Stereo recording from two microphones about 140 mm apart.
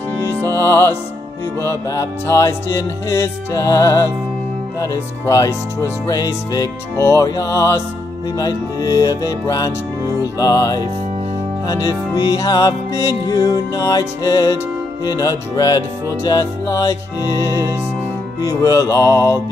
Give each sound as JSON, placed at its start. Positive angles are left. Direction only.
{"t": 1.6, "sound": "speech", "side_deg": 20}